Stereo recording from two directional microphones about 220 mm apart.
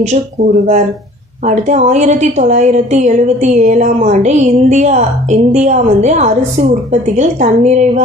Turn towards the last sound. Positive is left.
turn(degrees=-30)  # may be behind; listen again after turning